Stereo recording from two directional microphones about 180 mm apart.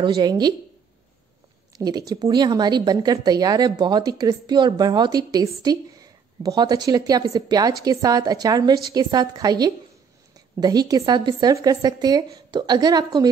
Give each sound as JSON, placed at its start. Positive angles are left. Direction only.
{"t": 0.0, "sound": "speech", "side_deg": -20}
{"t": 1.8, "sound": "speech", "side_deg": -20}